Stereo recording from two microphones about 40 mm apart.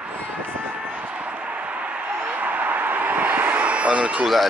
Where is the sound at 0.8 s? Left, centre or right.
Right.